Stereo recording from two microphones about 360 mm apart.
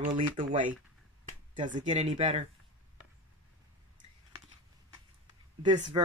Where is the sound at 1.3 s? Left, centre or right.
Centre.